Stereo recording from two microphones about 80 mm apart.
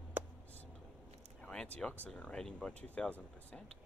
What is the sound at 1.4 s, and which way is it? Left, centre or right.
Speech, centre.